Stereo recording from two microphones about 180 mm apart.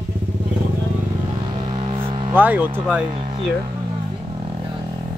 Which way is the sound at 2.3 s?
10° right (ahead or behind).